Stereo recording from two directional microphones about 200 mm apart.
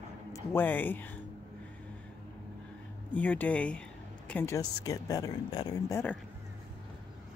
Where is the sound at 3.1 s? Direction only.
10° left (ahead or behind).